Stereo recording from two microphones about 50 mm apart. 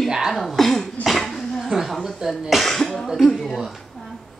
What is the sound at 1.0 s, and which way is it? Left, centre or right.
Dog, centre.